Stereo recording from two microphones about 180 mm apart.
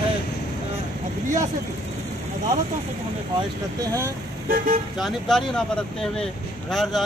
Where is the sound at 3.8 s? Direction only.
20° right (ahead or behind).